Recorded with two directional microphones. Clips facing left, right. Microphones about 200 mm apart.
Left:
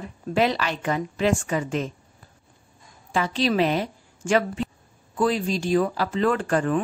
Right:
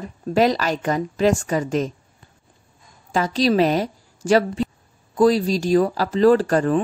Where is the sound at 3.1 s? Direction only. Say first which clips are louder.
Right 4 dB; 40° right (ahead or behind).